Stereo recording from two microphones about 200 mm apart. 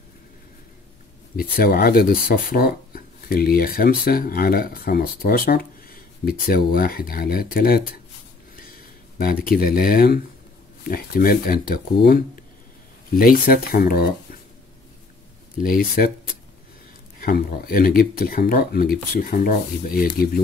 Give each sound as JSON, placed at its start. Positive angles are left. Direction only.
{"t": 1.6, "sound": "speech", "side_deg": 50}
{"t": 9.2, "sound": "speech", "side_deg": 45}
{"t": 15.5, "sound": "speech", "side_deg": 45}
{"t": 17.2, "sound": "speech", "side_deg": 50}